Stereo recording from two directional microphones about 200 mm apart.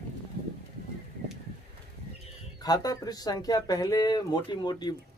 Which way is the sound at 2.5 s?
20° left (ahead or behind).